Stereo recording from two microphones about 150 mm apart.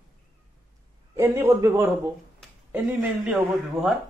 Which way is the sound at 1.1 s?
15° right (ahead or behind).